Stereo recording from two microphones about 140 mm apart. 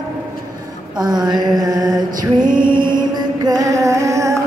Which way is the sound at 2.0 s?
75° right (ahead or behind).